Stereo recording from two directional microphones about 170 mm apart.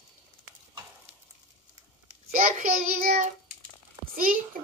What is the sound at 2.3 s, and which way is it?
Child singing, 60° right (ahead or behind).